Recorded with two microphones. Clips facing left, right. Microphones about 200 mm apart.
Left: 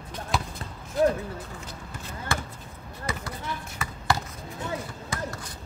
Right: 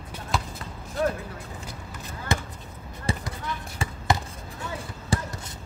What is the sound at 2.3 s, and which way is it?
Basketball bounce, 20° right (ahead or behind).